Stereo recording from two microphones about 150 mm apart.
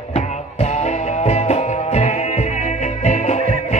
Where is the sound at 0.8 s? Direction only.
45° left (ahead or behind).